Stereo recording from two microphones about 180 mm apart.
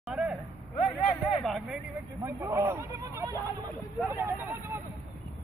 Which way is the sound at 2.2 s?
15° right (ahead or behind).